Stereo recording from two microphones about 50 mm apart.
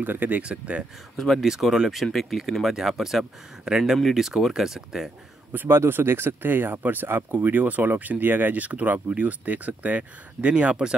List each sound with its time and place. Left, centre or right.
0.0 s speech: right
0.4 s speech: right
1.1 s speech: centre
1.4 s speech: centre
5.7 s speech: right
10.5 s speech: centre